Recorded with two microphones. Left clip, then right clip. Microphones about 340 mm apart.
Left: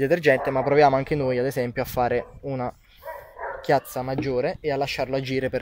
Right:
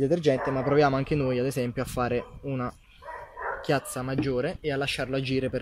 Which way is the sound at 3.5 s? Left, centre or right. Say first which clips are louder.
Left 7 dB; centre.